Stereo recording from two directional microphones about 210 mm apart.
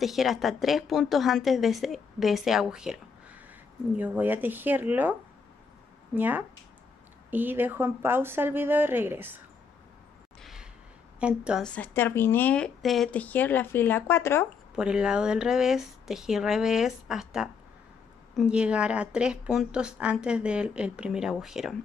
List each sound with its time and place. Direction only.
0.0 s a woman's voice: centre (ahead or behind)
6.1 s a woman's voice: 10° right (ahead or behind)
10.4 s a sound: centre (ahead or behind)
11.1 s a woman's voice: 5° right (ahead or behind); by 14.5 s 10° left (ahead or behind)
14.8 s a woman's voice: 5° right (ahead or behind)